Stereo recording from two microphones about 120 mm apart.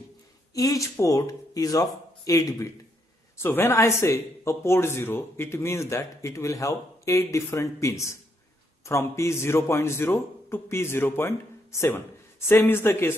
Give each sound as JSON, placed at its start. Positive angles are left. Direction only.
{"t": 0.6, "sound": "speech", "side_deg": 30}